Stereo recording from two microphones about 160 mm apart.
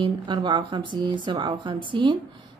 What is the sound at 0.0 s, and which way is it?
A woman's voice, 30° right (ahead or behind).